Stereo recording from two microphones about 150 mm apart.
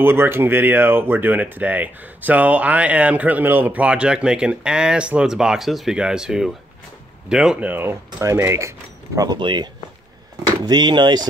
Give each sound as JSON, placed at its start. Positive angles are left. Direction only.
{"t": 0.0, "sound": "speech", "side_deg": -15}